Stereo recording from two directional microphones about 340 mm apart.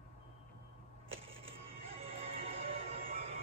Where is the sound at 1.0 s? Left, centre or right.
Centre.